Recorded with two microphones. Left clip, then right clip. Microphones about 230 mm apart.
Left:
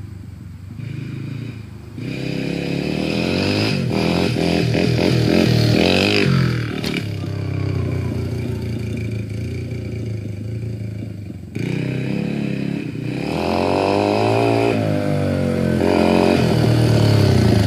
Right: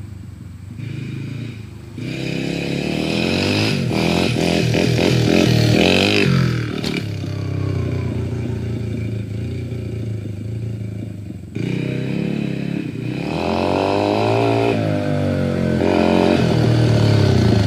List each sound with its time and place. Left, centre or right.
2.0 s vehicle: right; by 6.2 s centre
6.2 s music: centre
13.1 s vehicle: left